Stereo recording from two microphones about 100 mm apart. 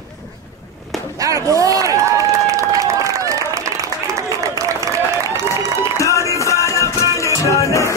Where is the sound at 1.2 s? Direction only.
35° right (ahead or behind).